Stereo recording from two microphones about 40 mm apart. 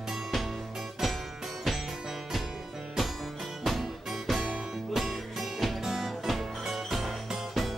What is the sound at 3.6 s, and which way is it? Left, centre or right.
Music, centre.